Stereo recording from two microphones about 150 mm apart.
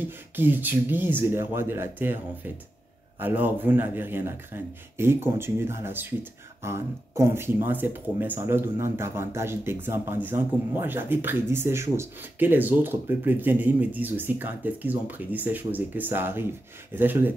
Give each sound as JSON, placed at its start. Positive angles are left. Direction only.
{"t": 0.0, "sound": "speech", "side_deg": -15}